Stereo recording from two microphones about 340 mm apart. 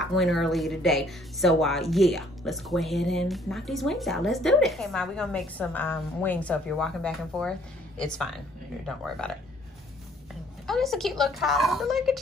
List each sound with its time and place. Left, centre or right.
0.0 s speech: centre
10.7 s speech: centre